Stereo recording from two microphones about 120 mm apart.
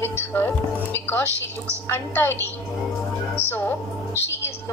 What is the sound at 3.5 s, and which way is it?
Speech, 15° left (ahead or behind).